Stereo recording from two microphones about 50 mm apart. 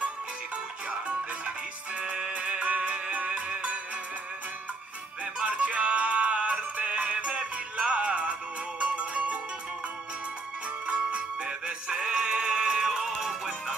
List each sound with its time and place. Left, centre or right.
0.8 s music: right
5.2 s music: right
10.9 s music: right